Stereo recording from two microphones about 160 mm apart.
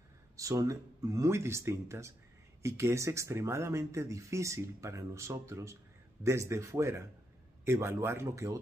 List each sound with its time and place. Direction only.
0.4 s speech: 20° right (ahead or behind)